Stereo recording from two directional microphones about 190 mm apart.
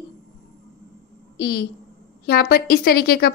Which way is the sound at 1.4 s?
55° left (ahead or behind).